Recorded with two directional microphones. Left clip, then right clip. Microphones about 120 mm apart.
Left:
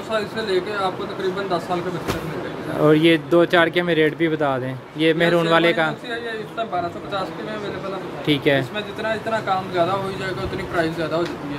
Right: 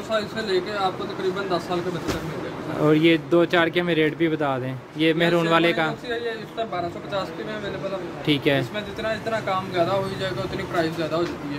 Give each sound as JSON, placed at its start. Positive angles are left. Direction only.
{"t": 0.1, "sound": "speech", "side_deg": -5}
{"t": 2.8, "sound": "speech", "side_deg": 5}
{"t": 8.3, "sound": "speech", "side_deg": 0}
{"t": 8.7, "sound": "speech", "side_deg": -30}
{"t": 10.8, "sound": "speech", "side_deg": -5}